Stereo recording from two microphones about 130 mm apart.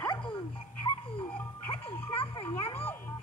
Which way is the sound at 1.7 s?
45° left (ahead or behind).